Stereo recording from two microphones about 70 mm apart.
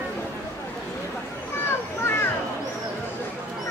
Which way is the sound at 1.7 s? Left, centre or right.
Left.